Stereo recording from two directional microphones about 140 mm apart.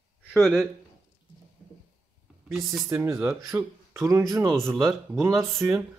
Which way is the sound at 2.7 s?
20° right (ahead or behind).